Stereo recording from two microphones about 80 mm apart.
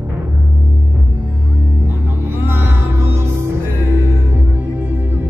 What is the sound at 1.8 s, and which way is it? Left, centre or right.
Music, right.